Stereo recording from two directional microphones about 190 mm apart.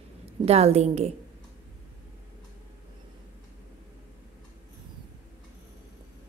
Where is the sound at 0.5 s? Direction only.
35° right (ahead or behind).